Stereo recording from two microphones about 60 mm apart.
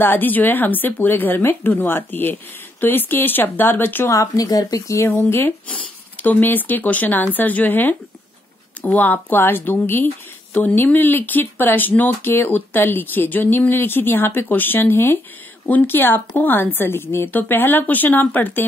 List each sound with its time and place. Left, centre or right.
0.0 s speech: left
4.1 s speech: left
4.9 s speech: left
6.2 s speech: left